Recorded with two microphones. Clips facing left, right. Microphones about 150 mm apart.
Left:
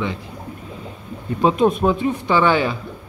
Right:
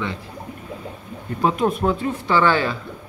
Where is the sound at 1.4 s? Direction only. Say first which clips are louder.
Left 4 dB; 20° left (ahead or behind).